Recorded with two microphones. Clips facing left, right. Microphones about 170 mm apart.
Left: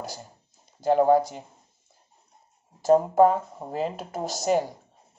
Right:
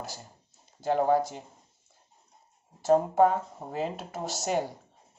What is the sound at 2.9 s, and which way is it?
Speech, 50° left (ahead or behind).